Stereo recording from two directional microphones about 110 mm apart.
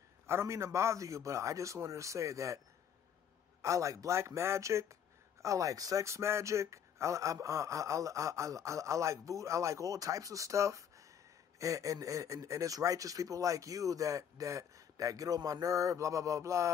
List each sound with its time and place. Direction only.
0.3 s a man's voice: 25° right (ahead or behind)
3.6 s a man's voice: 30° right (ahead or behind)